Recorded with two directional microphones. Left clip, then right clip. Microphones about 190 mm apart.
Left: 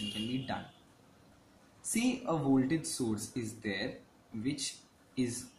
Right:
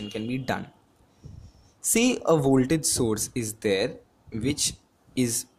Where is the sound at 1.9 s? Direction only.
60° right (ahead or behind).